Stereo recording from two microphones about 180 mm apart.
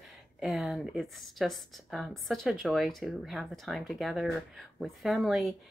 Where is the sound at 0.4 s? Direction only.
Centre (ahead or behind).